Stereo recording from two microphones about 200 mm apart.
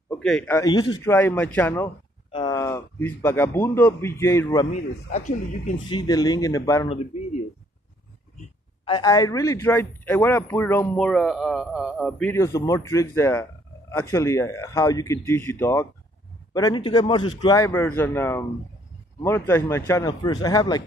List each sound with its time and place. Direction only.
0.2 s a man's voice: 5° left (ahead or behind)
5.9 s a man's voice: 20° left (ahead or behind)
8.8 s a man's voice: 20° left (ahead or behind)